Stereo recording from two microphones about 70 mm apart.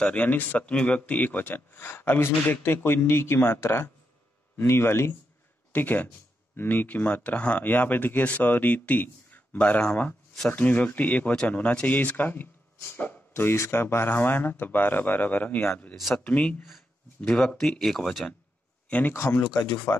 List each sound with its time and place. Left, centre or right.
0.0 s speech: left
5.7 s speech: left
17.3 s speech: centre
18.9 s speech: left
19.1 s speech: left
19.5 s speech: left